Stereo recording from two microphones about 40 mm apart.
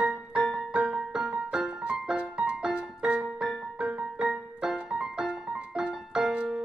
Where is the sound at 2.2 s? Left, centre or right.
Right.